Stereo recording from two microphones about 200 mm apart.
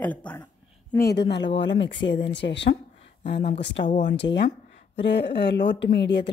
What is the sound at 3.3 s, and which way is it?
Speech, 30° left (ahead or behind).